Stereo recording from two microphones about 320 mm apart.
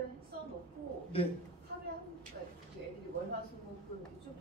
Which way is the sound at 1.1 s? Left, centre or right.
Centre.